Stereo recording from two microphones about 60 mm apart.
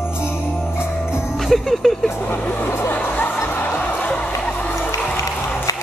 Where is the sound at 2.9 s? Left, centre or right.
Left.